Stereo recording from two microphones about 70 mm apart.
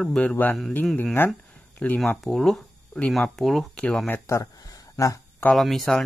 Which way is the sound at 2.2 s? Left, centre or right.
Centre.